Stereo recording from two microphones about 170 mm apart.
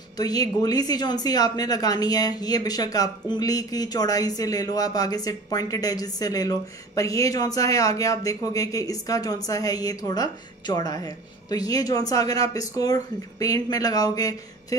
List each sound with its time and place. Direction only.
0.2 s a woman's voice: 20° left (ahead or behind)